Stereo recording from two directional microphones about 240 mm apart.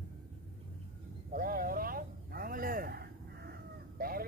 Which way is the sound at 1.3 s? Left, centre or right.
Right.